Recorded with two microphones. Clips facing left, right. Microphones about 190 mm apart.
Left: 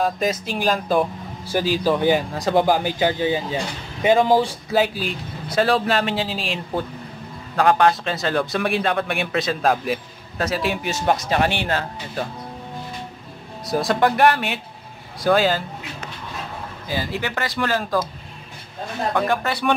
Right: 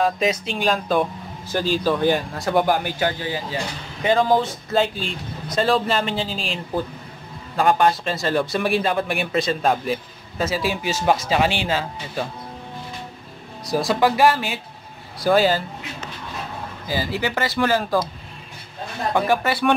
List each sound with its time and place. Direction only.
0.0 s speech: centre (ahead or behind); by 4.3 s 20° left (ahead or behind)
4.6 s speech: 5° left (ahead or behind)
13.7 s speech: centre (ahead or behind)
16.8 s speech: 5° right (ahead or behind)
19.1 s speech: 5° right (ahead or behind)